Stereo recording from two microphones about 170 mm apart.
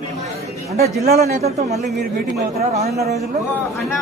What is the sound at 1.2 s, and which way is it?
Speech, 40° right (ahead or behind).